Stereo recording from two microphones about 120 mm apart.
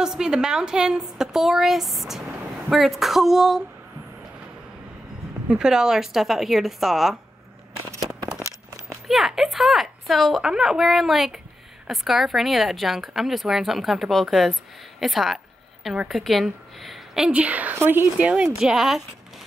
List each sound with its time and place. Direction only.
0.0 s speech: 5° right (ahead or behind)
5.5 s speech: 5° right (ahead or behind)
8.4 s a sound: 25° right (ahead or behind)
9.0 s a woman's voice: centre (ahead or behind)